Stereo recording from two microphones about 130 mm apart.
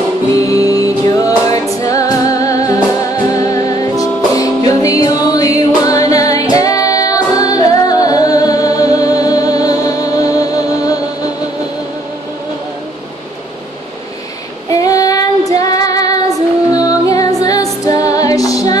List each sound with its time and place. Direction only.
0.4 s music: 25° left (ahead or behind)
14.7 s child singing: 25° left (ahead or behind)
16.7 s music: 25° left (ahead or behind)